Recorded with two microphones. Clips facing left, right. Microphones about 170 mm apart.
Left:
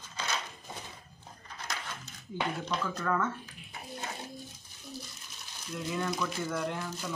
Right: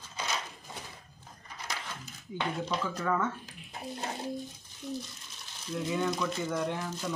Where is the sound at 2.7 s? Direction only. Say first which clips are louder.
Right 2 dB; 10° right (ahead or behind).